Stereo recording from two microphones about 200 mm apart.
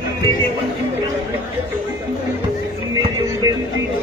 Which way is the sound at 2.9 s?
20° right (ahead or behind).